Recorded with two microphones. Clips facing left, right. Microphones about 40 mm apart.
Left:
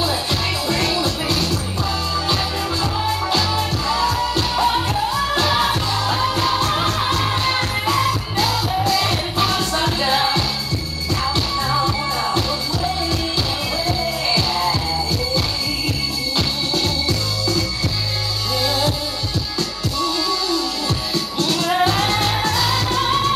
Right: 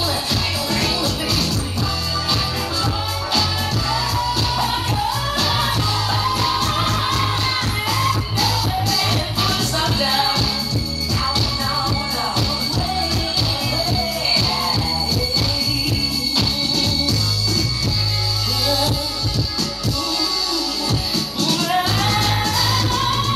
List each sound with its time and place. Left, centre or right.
0.7 s music: left
2.8 s music: left
8.4 s music: left
13.8 s music: left
16.3 s music: left
18.7 s music: left
21.4 s music: left